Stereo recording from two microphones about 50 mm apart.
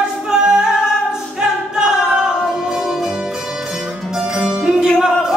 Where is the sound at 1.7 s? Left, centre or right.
Centre.